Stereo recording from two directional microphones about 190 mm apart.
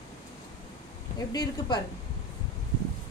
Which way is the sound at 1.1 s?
20° left (ahead or behind).